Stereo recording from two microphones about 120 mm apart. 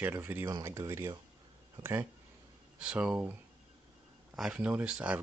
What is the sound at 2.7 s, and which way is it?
Speech, 10° right (ahead or behind).